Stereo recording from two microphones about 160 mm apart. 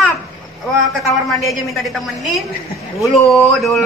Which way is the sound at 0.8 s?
Centre (ahead or behind).